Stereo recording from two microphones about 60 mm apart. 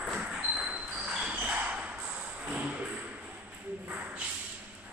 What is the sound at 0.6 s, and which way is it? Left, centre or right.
Basketball bounce, centre.